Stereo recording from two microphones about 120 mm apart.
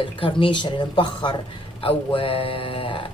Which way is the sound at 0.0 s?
45° left (ahead or behind).